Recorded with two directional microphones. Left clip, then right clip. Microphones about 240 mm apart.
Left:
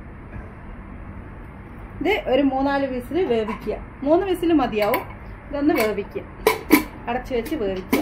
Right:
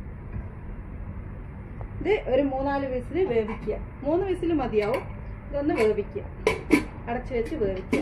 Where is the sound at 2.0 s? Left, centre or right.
Left.